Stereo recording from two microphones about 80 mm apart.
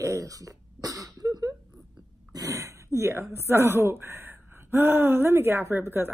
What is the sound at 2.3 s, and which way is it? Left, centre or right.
Speech, right.